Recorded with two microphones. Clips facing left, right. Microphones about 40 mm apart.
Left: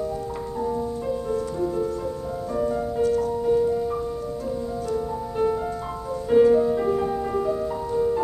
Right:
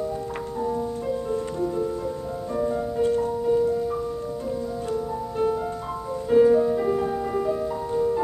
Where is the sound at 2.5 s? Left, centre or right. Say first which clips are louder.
Even; centre.